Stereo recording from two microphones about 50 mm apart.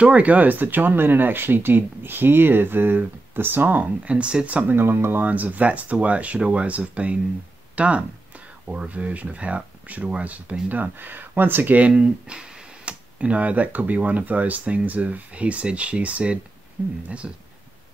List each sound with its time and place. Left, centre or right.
0.0 s speech: right
4.1 s speech: right
4.7 s speech: right
5.2 s speech: right
11.9 s speech: centre
17.2 s speech: centre